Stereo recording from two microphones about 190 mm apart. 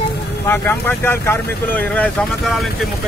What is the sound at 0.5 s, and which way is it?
Speech, 10° left (ahead or behind).